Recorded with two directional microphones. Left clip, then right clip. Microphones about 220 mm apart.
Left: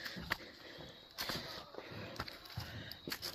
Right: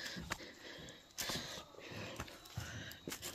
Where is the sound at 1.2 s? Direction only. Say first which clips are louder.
Left 1 dB; 10° right (ahead or behind).